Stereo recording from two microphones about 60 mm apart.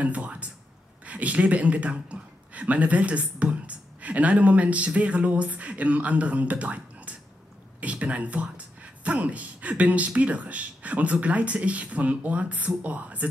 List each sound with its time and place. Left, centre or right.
0.0 s speech: right